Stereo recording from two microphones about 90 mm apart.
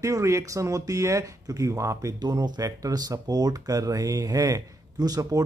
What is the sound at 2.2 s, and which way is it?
A man's voice, 50° right (ahead or behind).